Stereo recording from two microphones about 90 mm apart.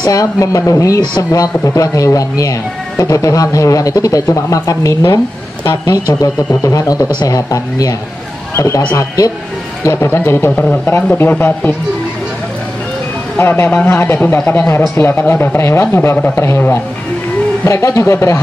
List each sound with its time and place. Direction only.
0.0 s speech: 40° left (ahead or behind)
9.9 s a man's voice: 25° left (ahead or behind)
10.5 s a man's voice: 15° left (ahead or behind)
13.4 s a man's voice: 25° left (ahead or behind)